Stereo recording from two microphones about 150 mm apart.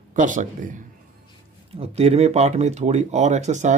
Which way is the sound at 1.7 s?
45° right (ahead or behind).